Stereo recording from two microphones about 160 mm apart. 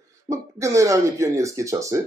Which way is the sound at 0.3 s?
20° right (ahead or behind).